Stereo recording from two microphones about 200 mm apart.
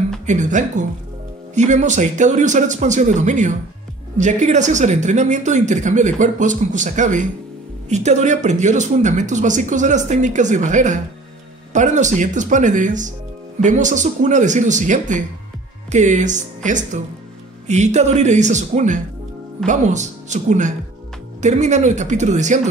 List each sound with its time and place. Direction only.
0.3 s speech: 40° right (ahead or behind)